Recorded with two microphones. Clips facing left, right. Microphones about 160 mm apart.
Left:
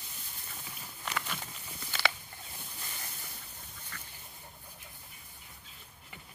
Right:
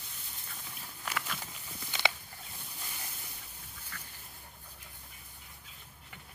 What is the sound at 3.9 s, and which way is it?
Duck, centre (ahead or behind).